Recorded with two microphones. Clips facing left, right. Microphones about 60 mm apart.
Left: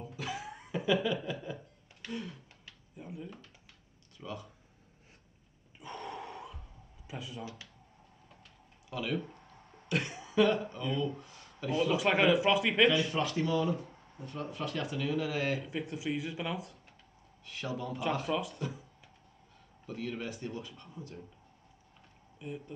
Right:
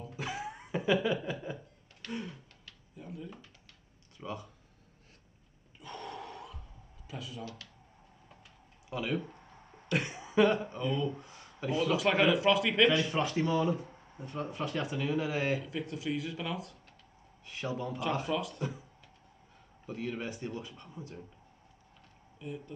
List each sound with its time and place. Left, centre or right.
0.2 s a sound: centre
2.6 s a sound: centre
4.2 s speech: centre
5.9 s a sound: centre
7.2 s a man's voice: centre
9.1 s speech: centre
9.5 s cough: centre
10.4 s a man's voice: centre
19.9 s a man's voice: centre
22.4 s speech: centre